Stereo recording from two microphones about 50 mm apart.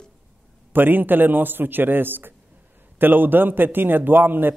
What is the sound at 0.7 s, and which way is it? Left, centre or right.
A man's voice, right.